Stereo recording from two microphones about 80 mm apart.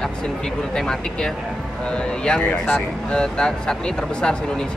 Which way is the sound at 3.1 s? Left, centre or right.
Centre.